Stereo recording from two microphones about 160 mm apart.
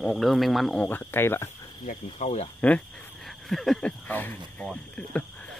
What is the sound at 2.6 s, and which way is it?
Speech, 5° left (ahead or behind).